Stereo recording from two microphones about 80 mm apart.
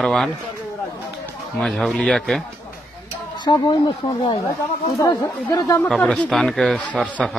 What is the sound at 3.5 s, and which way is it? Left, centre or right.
Speech, left.